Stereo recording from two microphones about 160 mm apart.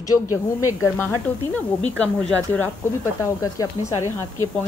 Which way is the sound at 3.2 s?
20° left (ahead or behind).